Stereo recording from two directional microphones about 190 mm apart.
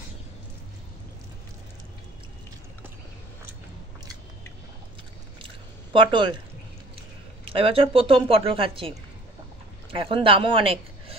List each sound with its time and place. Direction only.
5.9 s a woman's voice: 25° right (ahead or behind)
7.4 s a woman's voice: 30° right (ahead or behind)